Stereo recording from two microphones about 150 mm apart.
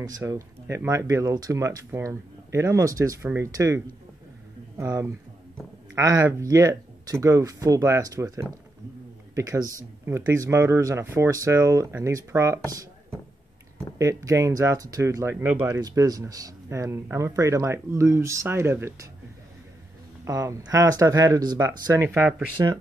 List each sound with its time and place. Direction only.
0.0 s speech: 20° right (ahead or behind)
13.9 s speech: 20° right (ahead or behind)
20.2 s speech: 20° right (ahead or behind)